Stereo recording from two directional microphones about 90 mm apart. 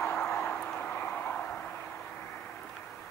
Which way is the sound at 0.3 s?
25° left (ahead or behind).